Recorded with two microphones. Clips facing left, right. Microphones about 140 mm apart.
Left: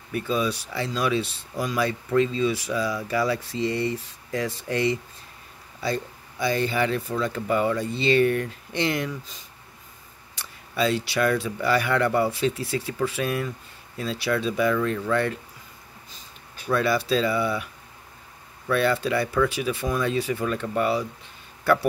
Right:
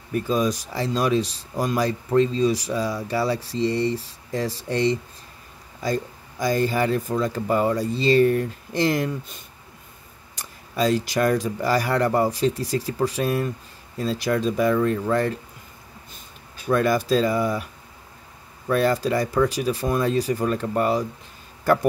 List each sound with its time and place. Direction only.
0.1 s speech: 40° right (ahead or behind)
10.3 s speech: 40° right (ahead or behind)
16.6 s speech: 45° right (ahead or behind)
18.7 s speech: 40° right (ahead or behind)